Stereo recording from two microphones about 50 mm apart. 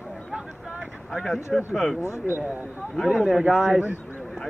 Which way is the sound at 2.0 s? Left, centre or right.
Left.